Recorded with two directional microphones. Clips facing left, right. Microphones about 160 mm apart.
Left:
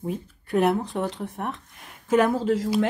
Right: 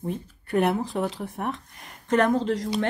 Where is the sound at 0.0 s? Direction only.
Centre (ahead or behind).